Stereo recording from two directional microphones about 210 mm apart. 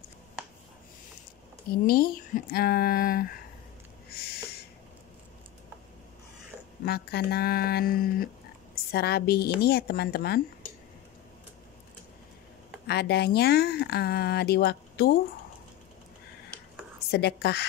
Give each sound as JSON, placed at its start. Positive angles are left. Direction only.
{"t": 1.9, "sound": "speech", "side_deg": 45}
{"t": 6.8, "sound": "speech", "side_deg": 50}
{"t": 12.8, "sound": "speech", "side_deg": 50}
{"t": 17.1, "sound": "speech", "side_deg": 50}